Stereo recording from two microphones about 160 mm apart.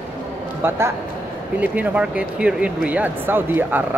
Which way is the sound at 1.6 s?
10° right (ahead or behind).